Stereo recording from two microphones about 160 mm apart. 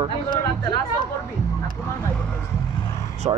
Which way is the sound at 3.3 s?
25° right (ahead or behind).